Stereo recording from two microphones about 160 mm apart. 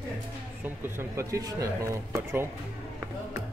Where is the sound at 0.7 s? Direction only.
15° right (ahead or behind).